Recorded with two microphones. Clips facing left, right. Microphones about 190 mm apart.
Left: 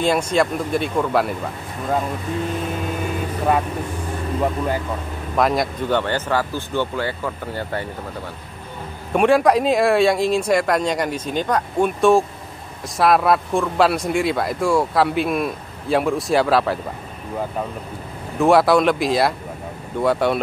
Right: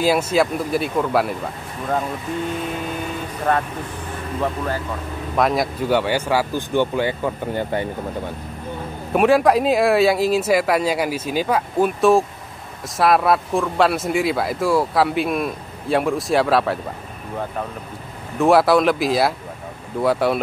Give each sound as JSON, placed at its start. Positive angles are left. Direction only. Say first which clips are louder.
{"t": 0.0, "sound": "speech", "louder": "right 1 dB", "side_deg": -5}
{"t": 4.4, "sound": "speech", "louder": "left 2 dB", "side_deg": 15}
{"t": 5.3, "sound": "speech", "louder": "even", "side_deg": 0}
{"t": 9.1, "sound": "speech", "louder": "even", "side_deg": 0}
{"t": 18.4, "sound": "speech", "louder": "even", "side_deg": 0}